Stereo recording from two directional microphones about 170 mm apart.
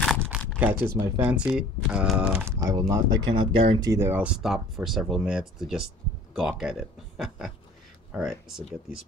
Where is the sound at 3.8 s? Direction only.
15° right (ahead or behind).